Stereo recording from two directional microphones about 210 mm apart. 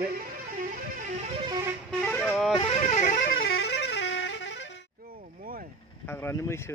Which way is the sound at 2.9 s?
35° left (ahead or behind).